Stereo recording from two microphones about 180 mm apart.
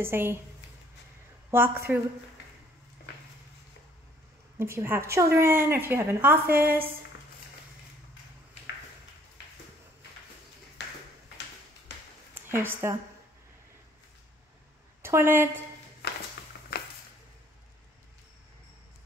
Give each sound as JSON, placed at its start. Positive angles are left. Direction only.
{"t": 0.0, "sound": "a woman's voice", "side_deg": -15}
{"t": 1.5, "sound": "a woman's voice", "side_deg": -10}
{"t": 4.6, "sound": "a woman's voice", "side_deg": -15}
{"t": 12.4, "sound": "speech", "side_deg": -15}
{"t": 15.0, "sound": "a woman's voice", "side_deg": -15}
{"t": 16.0, "sound": "a sound", "side_deg": 65}